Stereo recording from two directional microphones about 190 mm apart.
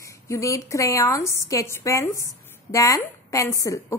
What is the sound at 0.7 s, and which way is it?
A woman's voice, 15° left (ahead or behind).